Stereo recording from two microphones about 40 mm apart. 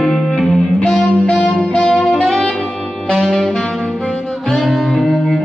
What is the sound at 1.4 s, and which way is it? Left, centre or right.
Music, left.